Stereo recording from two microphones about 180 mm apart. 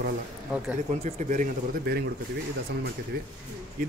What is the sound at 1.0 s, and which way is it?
Speech, 45° right (ahead or behind).